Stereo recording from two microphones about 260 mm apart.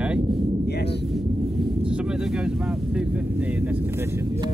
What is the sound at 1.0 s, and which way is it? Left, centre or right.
Speech, centre.